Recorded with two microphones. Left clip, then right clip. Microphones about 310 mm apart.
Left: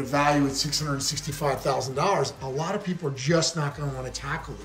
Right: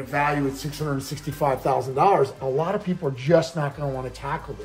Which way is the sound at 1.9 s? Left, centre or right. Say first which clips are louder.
Right 6 dB; centre.